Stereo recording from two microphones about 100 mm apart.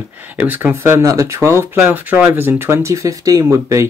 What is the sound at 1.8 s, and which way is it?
Speech, 15° right (ahead or behind).